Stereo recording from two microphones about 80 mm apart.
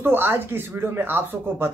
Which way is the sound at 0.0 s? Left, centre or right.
Right.